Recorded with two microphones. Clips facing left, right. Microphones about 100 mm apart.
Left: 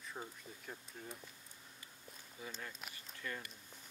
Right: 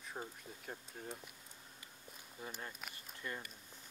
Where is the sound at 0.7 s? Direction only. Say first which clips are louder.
Right 3 dB; 45° right (ahead or behind).